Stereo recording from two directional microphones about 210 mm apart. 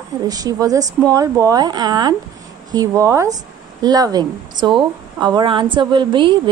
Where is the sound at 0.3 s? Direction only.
15° right (ahead or behind).